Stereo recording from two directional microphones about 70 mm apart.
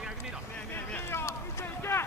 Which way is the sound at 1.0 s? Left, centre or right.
Left.